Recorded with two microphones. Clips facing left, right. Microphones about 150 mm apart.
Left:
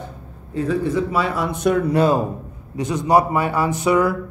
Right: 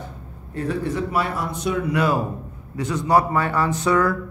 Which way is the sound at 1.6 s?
50° left (ahead or behind).